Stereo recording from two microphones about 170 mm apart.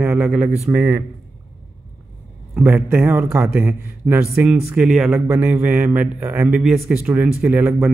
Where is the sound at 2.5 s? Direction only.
10° right (ahead or behind).